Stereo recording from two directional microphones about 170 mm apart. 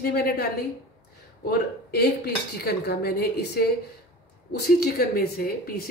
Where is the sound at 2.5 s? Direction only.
70° left (ahead or behind).